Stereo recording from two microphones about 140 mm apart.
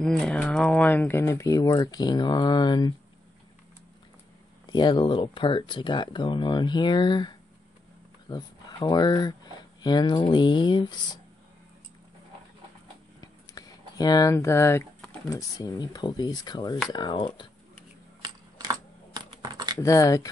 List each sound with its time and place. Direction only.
0.0 s speech: 5° left (ahead or behind); by 2.9 s 30° left (ahead or behind)
4.6 s speech: 35° left (ahead or behind)
13.2 s a sound: 25° left (ahead or behind)
15.2 s speech: 25° left (ahead or behind)
18.2 s typing: 30° right (ahead or behind)
19.8 s speech: 20° left (ahead or behind)